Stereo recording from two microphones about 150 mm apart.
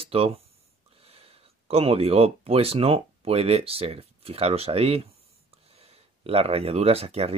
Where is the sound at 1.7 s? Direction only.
40° right (ahead or behind).